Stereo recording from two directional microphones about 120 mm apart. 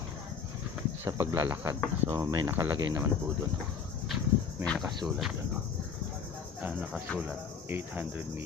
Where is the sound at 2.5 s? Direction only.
20° right (ahead or behind).